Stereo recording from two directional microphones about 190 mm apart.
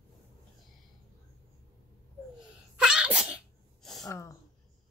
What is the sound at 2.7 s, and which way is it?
Sneeze, 5° right (ahead or behind).